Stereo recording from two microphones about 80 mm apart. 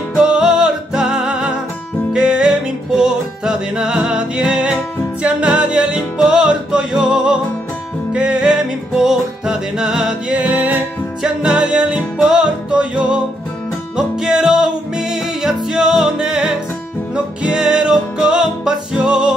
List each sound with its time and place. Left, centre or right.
0.2 s music: centre
10.3 s music: centre
11.2 s music: centre